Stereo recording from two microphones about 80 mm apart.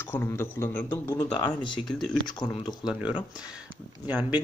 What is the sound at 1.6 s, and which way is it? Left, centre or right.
Speech, left.